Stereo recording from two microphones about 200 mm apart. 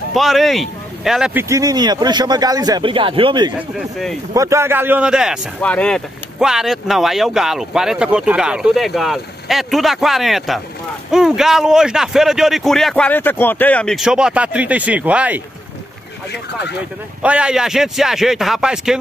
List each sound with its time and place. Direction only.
0.1 s speech: centre (ahead or behind)
1.5 s speech: 15° right (ahead or behind)
3.5 s speech: centre (ahead or behind)
4.3 s a man's voice: 15° right (ahead or behind)
17.2 s speech: 5° right (ahead or behind)